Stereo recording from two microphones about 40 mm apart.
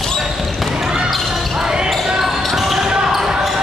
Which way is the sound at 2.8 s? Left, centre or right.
Centre.